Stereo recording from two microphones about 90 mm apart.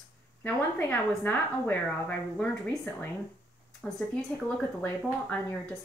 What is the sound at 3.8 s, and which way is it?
Speech, 5° left (ahead or behind).